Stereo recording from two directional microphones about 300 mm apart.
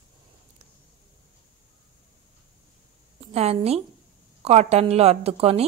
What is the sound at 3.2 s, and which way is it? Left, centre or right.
A woman's voice, right.